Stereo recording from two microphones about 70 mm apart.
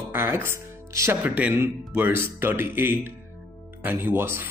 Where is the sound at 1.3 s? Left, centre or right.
Right.